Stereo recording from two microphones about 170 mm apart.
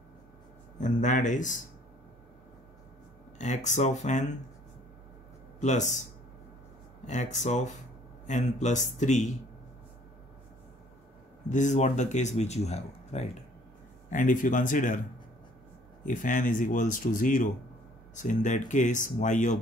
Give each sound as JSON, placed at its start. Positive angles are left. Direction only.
{"t": 0.7, "sound": "speech", "side_deg": 45}
{"t": 3.3, "sound": "speech", "side_deg": 45}
{"t": 5.6, "sound": "speech", "side_deg": 45}
{"t": 7.1, "sound": "speech", "side_deg": 45}
{"t": 11.4, "sound": "speech", "side_deg": 45}
{"t": 16.1, "sound": "speech", "side_deg": 50}